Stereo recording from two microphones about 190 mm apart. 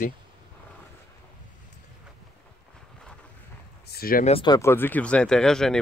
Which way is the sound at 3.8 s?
50° left (ahead or behind).